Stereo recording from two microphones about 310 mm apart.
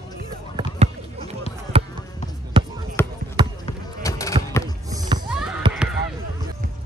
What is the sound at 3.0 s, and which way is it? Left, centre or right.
Basketball bounce, centre.